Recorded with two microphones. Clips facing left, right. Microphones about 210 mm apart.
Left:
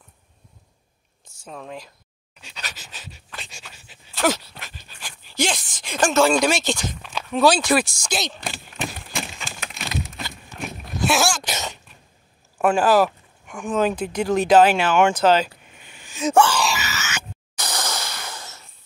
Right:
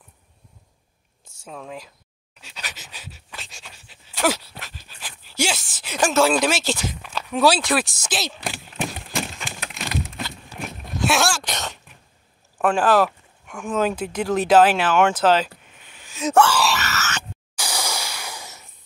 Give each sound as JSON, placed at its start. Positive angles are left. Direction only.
{"t": 1.4, "sound": "speech", "side_deg": 0}
{"t": 2.4, "sound": "pant", "side_deg": -5}
{"t": 2.7, "sound": "pant", "side_deg": -20}
{"t": 3.0, "sound": "pant", "side_deg": -5}
{"t": 4.1, "sound": "speech", "side_deg": -10}
{"t": 10.2, "sound": "dog", "side_deg": 0}
{"t": 12.5, "sound": "a sound", "side_deg": 5}